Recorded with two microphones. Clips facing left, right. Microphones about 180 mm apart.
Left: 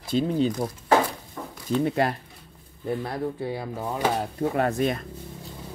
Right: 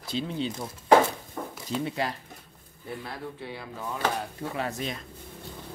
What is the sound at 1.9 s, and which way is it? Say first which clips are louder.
Speech: left 8 dB; 55° left (ahead or behind).